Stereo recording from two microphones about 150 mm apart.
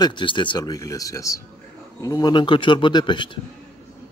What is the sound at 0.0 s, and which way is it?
Speech, 30° left (ahead or behind).